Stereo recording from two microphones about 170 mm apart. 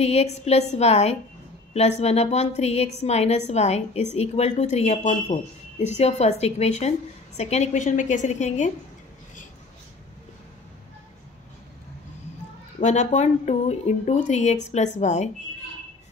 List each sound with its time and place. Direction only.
0.0 s a woman's voice: 40° left (ahead or behind)
12.8 s a woman's voice: 45° left (ahead or behind)